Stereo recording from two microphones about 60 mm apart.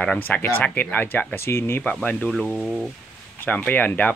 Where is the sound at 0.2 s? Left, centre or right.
Left.